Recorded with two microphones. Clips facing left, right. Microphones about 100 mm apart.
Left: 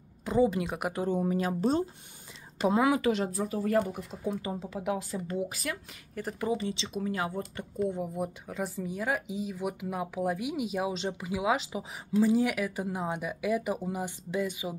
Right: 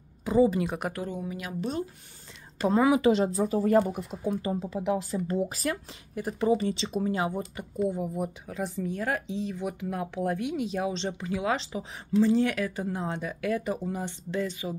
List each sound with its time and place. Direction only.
0.2 s a woman's voice: centre (ahead or behind)
0.9 s speech: 30° left (ahead or behind)
3.0 s speech: 25° right (ahead or behind)
6.2 s speech: 10° right (ahead or behind)
6.5 s speech: 45° right (ahead or behind)
7.0 s speech: 25° right (ahead or behind)
7.7 s speech: 5° right (ahead or behind)